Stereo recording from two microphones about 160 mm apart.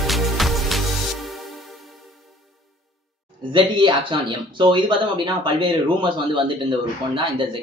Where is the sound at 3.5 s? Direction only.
30° right (ahead or behind).